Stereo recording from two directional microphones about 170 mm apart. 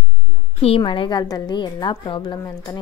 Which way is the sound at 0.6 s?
35° left (ahead or behind).